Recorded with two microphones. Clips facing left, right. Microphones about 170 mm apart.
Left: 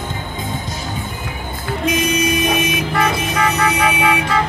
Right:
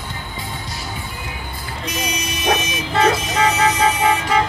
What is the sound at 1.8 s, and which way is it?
Vehicle, 50° left (ahead or behind).